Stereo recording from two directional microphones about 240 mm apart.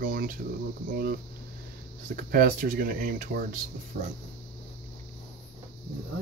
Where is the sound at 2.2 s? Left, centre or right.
Right.